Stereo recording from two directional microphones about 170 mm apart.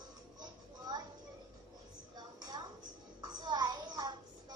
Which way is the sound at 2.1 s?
25° right (ahead or behind).